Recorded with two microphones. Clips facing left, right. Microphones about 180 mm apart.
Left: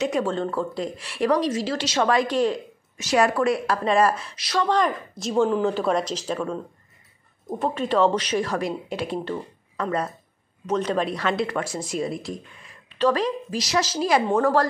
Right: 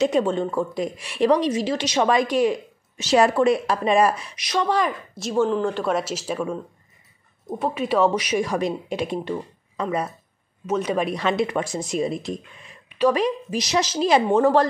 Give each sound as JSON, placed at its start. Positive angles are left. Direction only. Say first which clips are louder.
{"t": 0.0, "sound": "speech", "louder": "right 3 dB", "side_deg": -20}
{"t": 3.0, "sound": "speech", "louder": "right 3 dB", "side_deg": -25}
{"t": 4.7, "sound": "speech", "louder": "left 1 dB", "side_deg": -5}